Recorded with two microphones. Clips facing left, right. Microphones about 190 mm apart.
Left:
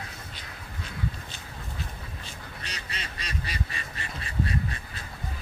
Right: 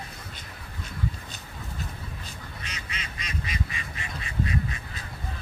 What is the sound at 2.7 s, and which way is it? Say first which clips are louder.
Duck: left 2 dB; 35° left (ahead or behind).